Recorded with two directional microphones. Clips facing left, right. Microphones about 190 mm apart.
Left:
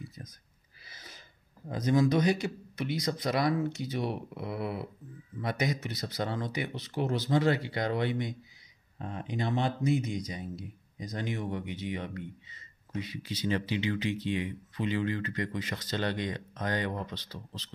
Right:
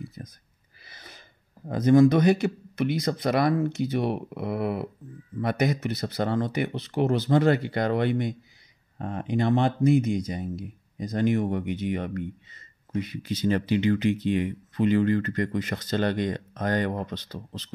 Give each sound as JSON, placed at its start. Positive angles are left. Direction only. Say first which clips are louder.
{"t": 0.2, "sound": "a sound", "louder": "right 6 dB", "side_deg": -60}
{"t": 0.8, "sound": "gasp", "louder": "right 3 dB", "side_deg": -60}
{"t": 1.7, "sound": "speech", "louder": "right 8 dB", "side_deg": -55}